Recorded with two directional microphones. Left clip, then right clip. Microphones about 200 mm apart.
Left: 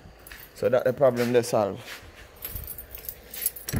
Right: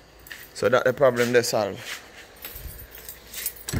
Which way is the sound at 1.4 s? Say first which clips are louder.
Even; 15° left (ahead or behind).